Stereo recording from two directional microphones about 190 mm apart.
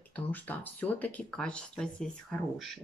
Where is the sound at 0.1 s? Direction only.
10° left (ahead or behind).